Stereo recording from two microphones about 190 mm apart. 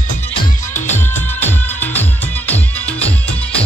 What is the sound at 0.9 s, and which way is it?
Music, 10° left (ahead or behind).